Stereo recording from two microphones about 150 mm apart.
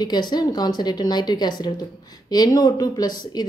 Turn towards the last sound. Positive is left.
turn(degrees=30)  # may be behind; listen again after turning